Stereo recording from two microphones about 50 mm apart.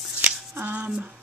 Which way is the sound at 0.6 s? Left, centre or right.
Right.